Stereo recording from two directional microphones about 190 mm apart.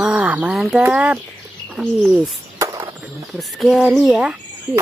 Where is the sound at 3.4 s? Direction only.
Centre (ahead or behind).